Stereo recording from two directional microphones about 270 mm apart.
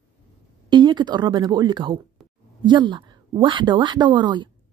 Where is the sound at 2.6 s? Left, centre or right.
Centre.